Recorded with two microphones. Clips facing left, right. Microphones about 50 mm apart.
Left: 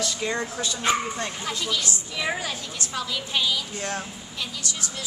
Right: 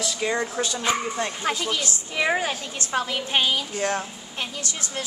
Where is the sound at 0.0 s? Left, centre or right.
Centre.